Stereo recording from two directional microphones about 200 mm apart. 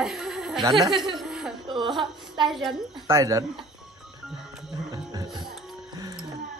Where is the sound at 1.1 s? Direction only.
Centre (ahead or behind).